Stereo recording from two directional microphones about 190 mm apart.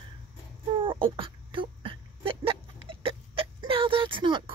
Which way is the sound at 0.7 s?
25° right (ahead or behind).